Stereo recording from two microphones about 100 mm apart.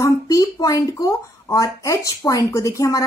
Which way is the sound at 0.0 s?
35° left (ahead or behind).